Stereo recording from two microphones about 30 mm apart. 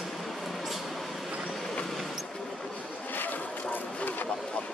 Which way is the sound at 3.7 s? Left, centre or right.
Left.